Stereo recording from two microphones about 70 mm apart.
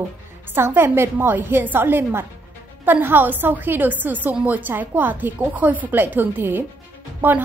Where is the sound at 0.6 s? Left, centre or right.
Right.